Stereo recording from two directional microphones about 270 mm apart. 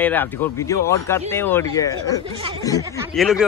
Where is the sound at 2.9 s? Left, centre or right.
Centre.